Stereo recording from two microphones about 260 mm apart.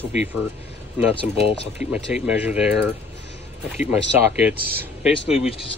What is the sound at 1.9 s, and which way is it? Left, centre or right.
Speech, centre.